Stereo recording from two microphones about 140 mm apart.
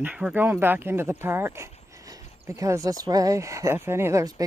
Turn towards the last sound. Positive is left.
turn(degrees=-20)  # may be behind; listen again after turning